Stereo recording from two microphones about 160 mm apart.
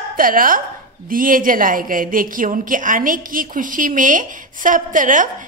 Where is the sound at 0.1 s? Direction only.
60° right (ahead or behind).